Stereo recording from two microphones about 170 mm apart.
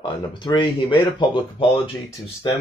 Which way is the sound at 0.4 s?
30° left (ahead or behind).